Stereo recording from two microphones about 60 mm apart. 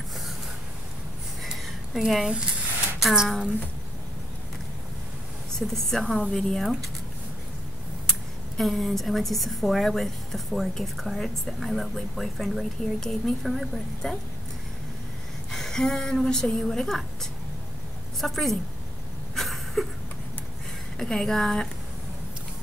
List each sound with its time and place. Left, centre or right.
2.0 s a woman's voice: centre
5.5 s a woman's voice: centre
8.1 s a woman's voice: centre
15.5 s a woman's voice: centre
19.3 s a sound: centre
21.0 s a woman's voice: centre